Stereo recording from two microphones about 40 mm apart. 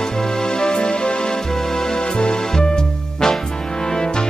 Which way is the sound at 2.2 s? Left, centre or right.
Left.